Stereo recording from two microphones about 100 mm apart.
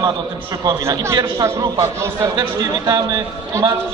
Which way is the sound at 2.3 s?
45° right (ahead or behind).